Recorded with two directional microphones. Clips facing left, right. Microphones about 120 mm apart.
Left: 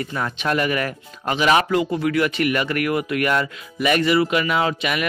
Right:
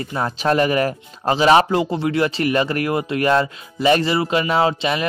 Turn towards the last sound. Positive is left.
turn(degrees=-30)  # may be behind; listen again after turning